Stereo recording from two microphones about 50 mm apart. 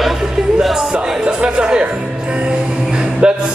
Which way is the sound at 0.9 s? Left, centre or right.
Right.